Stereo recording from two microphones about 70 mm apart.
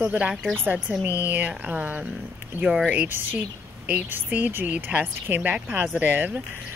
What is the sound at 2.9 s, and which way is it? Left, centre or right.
A woman's voice, right.